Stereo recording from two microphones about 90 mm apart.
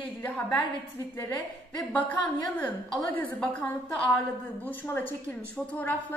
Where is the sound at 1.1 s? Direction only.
20° left (ahead or behind).